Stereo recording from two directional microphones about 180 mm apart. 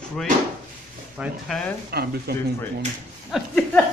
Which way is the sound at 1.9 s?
60° right (ahead or behind).